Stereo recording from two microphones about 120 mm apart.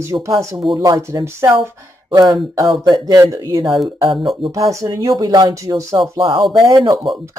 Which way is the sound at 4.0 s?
40° right (ahead or behind).